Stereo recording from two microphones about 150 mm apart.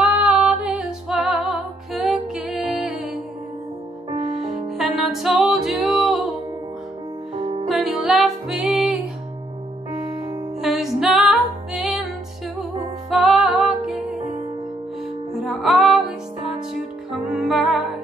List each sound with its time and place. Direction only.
0.0 s music: 5° right (ahead or behind)
4.4 s music: centre (ahead or behind)
7.3 s music: 40° right (ahead or behind)
7.6 s music: centre (ahead or behind)
10.1 s music: 20° right (ahead or behind)
10.6 s music: centre (ahead or behind)
13.1 s music: centre (ahead or behind)
15.3 s music: centre (ahead or behind)
17.1 s music: 5° right (ahead or behind)